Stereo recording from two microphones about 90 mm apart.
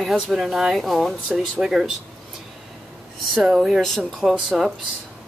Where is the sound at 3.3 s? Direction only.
5° right (ahead or behind).